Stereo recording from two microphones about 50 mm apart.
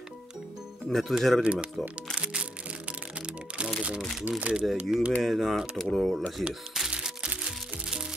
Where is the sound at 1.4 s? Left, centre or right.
Right.